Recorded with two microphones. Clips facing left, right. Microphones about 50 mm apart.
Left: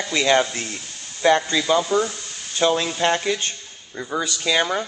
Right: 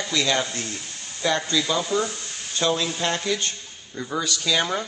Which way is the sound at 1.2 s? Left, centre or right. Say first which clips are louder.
Left 5 dB; centre.